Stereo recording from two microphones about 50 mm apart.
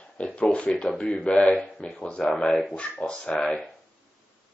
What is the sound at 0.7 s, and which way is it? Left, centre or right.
Speech, left.